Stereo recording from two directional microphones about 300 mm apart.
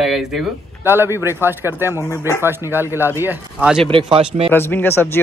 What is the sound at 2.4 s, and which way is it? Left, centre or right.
Speech, centre.